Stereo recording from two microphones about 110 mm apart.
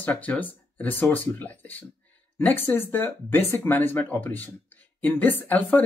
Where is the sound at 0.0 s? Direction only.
15° left (ahead or behind).